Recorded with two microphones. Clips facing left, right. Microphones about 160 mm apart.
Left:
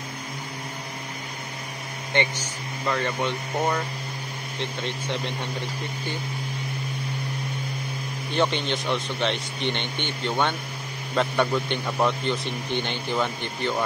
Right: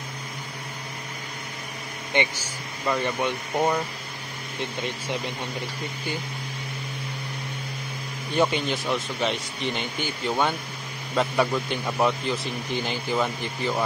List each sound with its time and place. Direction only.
2.1 s speech: 15° right (ahead or behind)
8.4 s a man's voice: 5° right (ahead or behind)